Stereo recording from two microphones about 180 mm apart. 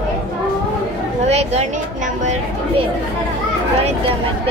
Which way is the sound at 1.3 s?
35° right (ahead or behind).